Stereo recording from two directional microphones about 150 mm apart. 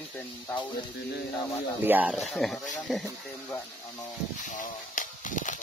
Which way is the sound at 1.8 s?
10° right (ahead or behind).